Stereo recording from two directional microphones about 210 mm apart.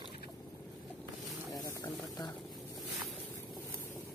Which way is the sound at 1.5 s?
15° left (ahead or behind).